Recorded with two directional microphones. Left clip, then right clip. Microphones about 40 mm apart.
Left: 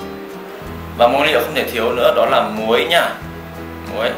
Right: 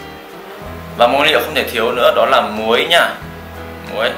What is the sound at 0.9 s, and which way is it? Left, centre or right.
A man's voice, centre.